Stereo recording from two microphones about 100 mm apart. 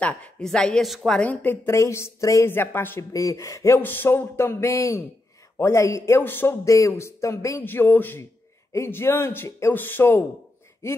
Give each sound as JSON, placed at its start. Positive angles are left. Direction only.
{"t": 0.0, "sound": "speech", "side_deg": 10}
{"t": 1.2, "sound": "speech", "side_deg": 20}
{"t": 1.7, "sound": "speech", "side_deg": 30}
{"t": 3.1, "sound": "speech", "side_deg": 35}
{"t": 3.8, "sound": "speech", "side_deg": 20}